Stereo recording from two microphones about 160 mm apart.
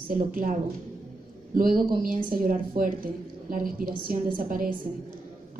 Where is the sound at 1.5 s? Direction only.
60° right (ahead or behind).